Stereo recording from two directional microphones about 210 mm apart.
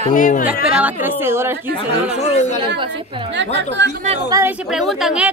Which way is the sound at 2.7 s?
25° right (ahead or behind).